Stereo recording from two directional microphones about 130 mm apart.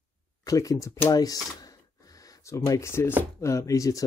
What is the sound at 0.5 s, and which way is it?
Speech, 25° left (ahead or behind).